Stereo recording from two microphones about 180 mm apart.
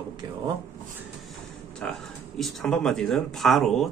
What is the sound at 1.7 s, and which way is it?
Speech, 5° left (ahead or behind).